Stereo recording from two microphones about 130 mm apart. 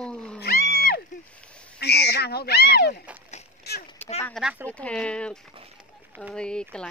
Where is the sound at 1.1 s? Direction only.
70° left (ahead or behind).